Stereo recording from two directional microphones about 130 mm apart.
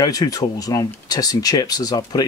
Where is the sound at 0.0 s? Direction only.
30° left (ahead or behind).